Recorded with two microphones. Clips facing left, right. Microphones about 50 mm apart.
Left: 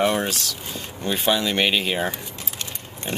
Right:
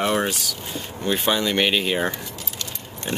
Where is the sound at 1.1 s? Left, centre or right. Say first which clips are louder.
Even; centre.